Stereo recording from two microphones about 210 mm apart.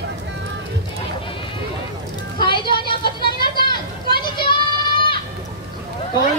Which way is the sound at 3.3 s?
45° left (ahead or behind).